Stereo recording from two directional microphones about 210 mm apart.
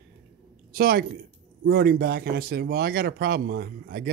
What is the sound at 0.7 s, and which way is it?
Speech, 45° right (ahead or behind).